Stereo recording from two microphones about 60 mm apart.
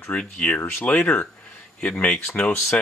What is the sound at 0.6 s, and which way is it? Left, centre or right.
Speech, left.